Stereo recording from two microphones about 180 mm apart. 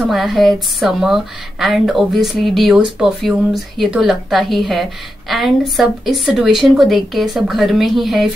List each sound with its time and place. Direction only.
0.1 s a woman's voice: centre (ahead or behind)